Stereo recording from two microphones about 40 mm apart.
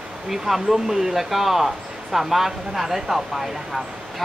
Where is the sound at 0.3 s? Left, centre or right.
Centre.